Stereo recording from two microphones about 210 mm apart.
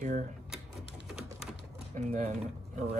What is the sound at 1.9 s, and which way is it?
Speech, 35° right (ahead or behind).